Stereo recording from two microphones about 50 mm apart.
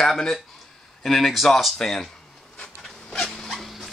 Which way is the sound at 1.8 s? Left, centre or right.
Centre.